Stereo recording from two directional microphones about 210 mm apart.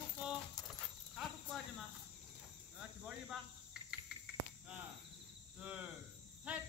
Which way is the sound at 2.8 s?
5° right (ahead or behind).